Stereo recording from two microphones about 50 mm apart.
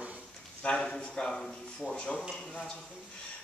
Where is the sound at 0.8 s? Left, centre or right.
Centre.